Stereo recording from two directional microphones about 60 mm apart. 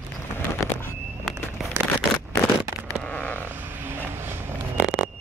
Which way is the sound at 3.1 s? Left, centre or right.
Left.